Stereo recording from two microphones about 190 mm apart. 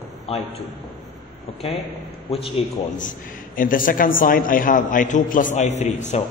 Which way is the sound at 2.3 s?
30° left (ahead or behind).